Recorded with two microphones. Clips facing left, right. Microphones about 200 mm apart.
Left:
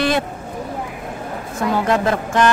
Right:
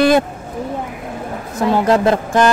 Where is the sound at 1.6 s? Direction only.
35° right (ahead or behind).